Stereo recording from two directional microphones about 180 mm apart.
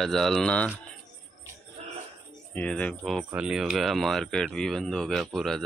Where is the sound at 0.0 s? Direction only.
Centre (ahead or behind).